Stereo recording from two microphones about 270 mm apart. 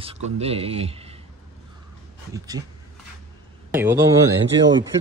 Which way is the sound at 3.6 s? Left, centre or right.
Centre.